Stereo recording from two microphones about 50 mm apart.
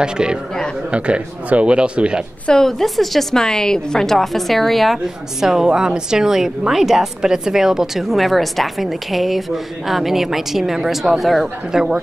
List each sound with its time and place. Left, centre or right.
0.0 s a woman's voice: centre
2.4 s a woman's voice: centre
5.0 s a woman's voice: centre
11.7 s a woman's voice: centre